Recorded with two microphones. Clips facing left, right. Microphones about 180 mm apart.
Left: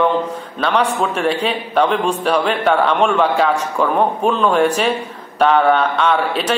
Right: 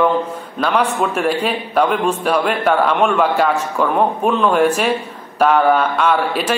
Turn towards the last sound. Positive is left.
turn(degrees=-5)  # may be behind; listen again after turning